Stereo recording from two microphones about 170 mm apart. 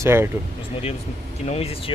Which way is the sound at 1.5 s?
35° left (ahead or behind).